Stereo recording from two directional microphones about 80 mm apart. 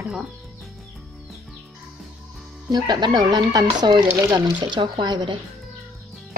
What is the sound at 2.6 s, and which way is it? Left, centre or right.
Speech, right.